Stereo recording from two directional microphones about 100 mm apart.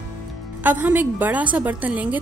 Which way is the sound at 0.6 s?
15° right (ahead or behind).